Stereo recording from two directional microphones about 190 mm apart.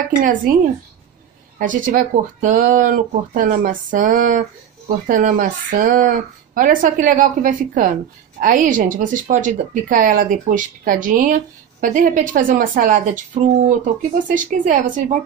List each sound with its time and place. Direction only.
0.1 s speech: 45° right (ahead or behind)
1.6 s speech: 45° right (ahead or behind)